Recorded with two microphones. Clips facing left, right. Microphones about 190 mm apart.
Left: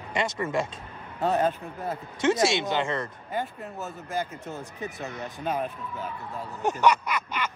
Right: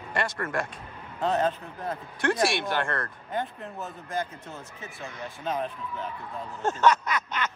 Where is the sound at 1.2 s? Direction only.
10° left (ahead or behind).